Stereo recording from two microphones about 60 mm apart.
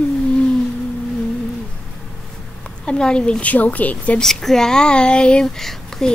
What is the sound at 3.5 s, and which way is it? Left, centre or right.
Speech, left.